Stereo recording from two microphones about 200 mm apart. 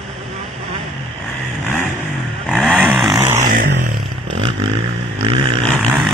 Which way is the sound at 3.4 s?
40° right (ahead or behind).